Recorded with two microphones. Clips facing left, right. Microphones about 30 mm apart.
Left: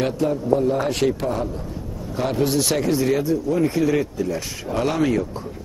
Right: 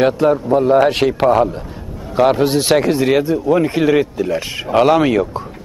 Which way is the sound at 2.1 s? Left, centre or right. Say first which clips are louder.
Right 8 dB; right.